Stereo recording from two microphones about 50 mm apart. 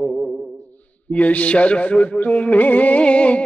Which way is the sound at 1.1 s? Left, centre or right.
Left.